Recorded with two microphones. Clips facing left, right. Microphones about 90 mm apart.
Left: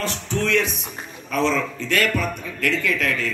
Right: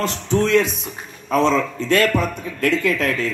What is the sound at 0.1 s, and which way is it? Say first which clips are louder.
A man's voice: right 6 dB; 35° right (ahead or behind).